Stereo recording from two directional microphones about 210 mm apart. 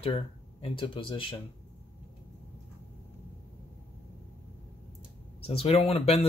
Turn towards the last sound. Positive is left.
turn(degrees=30)  # may be behind; listen again after turning